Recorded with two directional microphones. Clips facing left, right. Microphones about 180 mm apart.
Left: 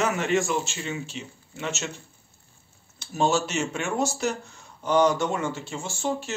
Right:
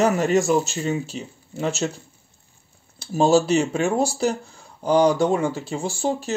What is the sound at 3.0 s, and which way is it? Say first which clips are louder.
Speech: right 7 dB; 35° right (ahead or behind).